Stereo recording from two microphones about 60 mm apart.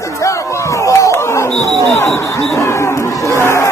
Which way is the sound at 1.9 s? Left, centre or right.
Left.